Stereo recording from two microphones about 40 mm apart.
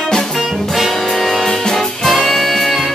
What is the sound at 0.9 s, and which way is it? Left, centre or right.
Music, centre.